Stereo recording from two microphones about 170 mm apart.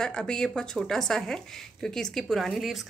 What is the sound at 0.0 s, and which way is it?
Speech, 5° left (ahead or behind).